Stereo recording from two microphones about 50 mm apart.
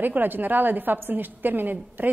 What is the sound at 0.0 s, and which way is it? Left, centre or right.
A woman's voice, right.